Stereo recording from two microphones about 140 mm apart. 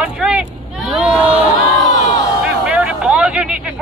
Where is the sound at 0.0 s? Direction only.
5° right (ahead or behind).